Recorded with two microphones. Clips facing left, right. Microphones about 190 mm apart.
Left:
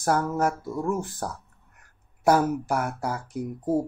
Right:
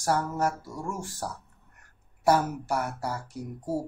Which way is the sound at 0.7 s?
55° left (ahead or behind).